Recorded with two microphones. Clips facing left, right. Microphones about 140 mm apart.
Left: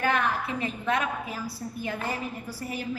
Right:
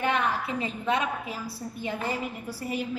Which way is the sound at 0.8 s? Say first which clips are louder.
Right 1 dB; 25° right (ahead or behind).